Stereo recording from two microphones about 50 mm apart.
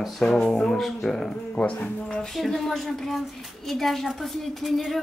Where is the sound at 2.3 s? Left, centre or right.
Centre.